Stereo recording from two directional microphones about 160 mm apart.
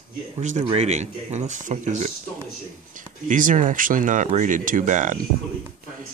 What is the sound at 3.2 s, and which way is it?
Speech, 55° right (ahead or behind).